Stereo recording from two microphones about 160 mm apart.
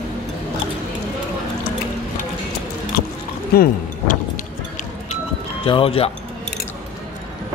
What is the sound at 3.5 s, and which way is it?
Speech, 75° left (ahead or behind).